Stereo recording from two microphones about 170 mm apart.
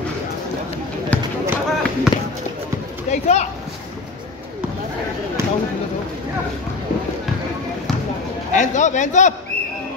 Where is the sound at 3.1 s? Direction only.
40° left (ahead or behind).